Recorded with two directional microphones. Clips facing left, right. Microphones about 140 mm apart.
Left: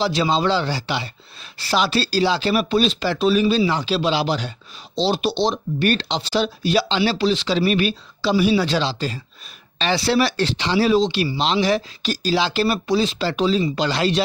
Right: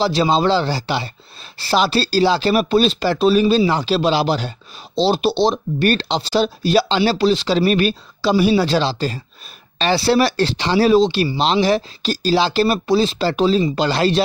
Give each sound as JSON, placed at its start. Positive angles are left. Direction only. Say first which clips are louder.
{"t": 0.0, "sound": "speech", "louder": "right 3 dB", "side_deg": -40}